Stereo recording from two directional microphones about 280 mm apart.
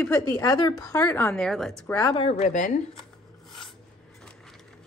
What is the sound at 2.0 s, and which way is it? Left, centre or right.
Speech, centre.